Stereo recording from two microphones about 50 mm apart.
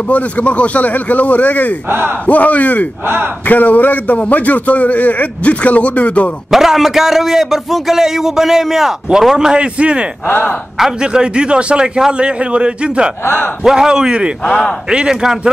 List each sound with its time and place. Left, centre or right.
0.1 s speech: left
1.9 s speech: right
2.2 s a man's voice: left
6.5 s a man's voice: centre
9.6 s a man's voice: right
10.2 s speech: left
11.0 s a man's voice: centre
13.2 s speech: left
13.7 s a man's voice: centre
14.4 s a man's voice: left
14.9 s a man's voice: centre